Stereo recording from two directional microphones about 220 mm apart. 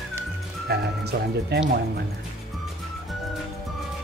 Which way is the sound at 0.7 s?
45° right (ahead or behind).